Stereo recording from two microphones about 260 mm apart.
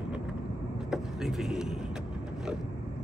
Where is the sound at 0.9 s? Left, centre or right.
Centre.